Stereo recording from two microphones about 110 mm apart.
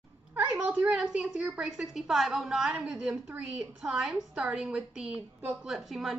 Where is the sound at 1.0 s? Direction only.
15° right (ahead or behind).